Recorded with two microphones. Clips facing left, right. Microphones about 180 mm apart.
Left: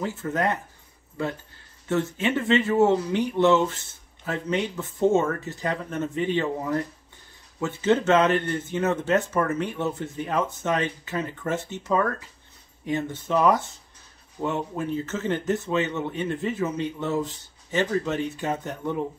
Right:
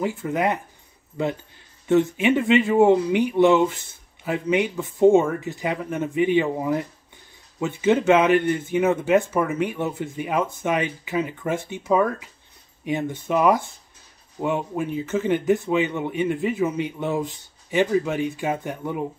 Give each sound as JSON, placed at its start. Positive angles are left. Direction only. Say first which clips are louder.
{"t": 0.0, "sound": "speech", "louder": "right 3 dB", "side_deg": -15}